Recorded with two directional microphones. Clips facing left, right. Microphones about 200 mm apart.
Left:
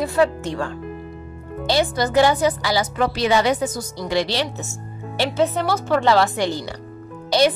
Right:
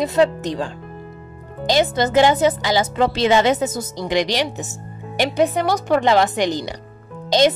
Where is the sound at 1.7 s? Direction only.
20° right (ahead or behind).